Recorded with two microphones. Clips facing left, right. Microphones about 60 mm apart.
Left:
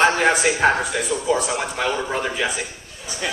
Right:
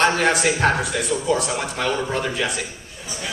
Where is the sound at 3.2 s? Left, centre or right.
Left.